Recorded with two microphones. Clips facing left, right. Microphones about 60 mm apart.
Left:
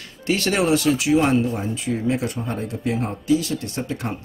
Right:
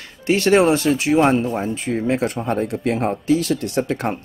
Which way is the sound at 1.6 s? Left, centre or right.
Right.